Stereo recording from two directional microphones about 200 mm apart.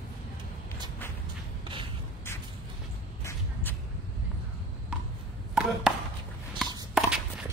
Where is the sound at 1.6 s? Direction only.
25° right (ahead or behind).